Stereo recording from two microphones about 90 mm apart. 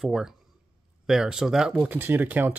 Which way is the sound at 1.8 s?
20° right (ahead or behind).